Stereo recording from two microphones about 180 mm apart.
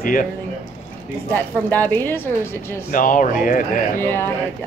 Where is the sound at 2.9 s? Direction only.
50° left (ahead or behind).